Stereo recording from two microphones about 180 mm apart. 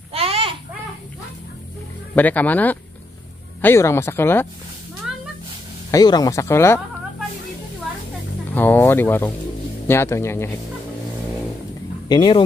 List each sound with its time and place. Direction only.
0.1 s a sound: 30° right (ahead or behind)
2.1 s speech: 10° left (ahead or behind)
5.9 s speech: 20° left (ahead or behind)
8.5 s speech: 10° left (ahead or behind)
12.1 s speech: 25° left (ahead or behind)